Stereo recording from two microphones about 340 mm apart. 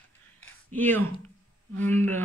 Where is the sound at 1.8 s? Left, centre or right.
Centre.